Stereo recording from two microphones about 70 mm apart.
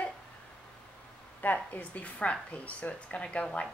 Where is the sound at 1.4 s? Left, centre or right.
Left.